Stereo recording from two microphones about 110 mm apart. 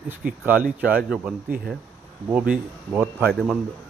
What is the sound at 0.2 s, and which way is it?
Speech, 15° right (ahead or behind).